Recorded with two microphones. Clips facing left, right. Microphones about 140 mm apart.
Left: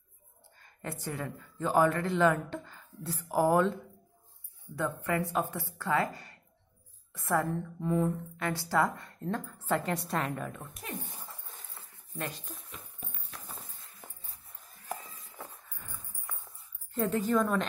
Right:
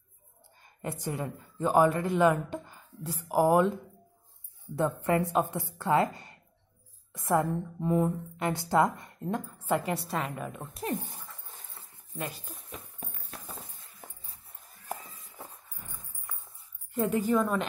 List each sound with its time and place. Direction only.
0.6 s a woman's voice: 15° right (ahead or behind)
4.7 s speech: 25° right (ahead or behind)
7.1 s a woman's voice: 20° right (ahead or behind)
10.7 s speech: 30° right (ahead or behind)
12.2 s a woman's voice: 5° right (ahead or behind)
12.6 s horse: 40° right (ahead or behind)
15.2 s a sound: 15° right (ahead or behind)
16.9 s a woman's voice: 10° right (ahead or behind)